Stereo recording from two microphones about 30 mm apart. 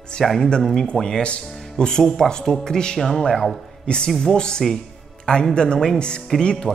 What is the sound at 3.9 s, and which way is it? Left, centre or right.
Speech, left.